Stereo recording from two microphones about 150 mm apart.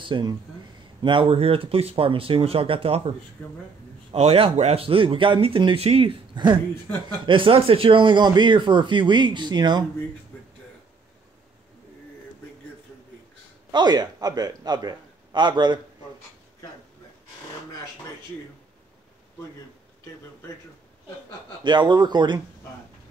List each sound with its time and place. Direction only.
0.0 s speech: 30° right (ahead or behind)
3.4 s speech: 5° left (ahead or behind)
4.1 s speech: 40° right (ahead or behind)
13.7 s a man's voice: 30° right (ahead or behind)
21.6 s speech: 30° right (ahead or behind)